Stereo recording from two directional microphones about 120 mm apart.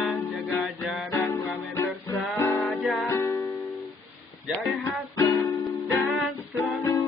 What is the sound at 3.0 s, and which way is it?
Music, 25° left (ahead or behind).